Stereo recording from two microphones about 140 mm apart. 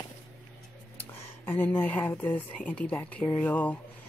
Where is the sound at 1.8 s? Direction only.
10° left (ahead or behind).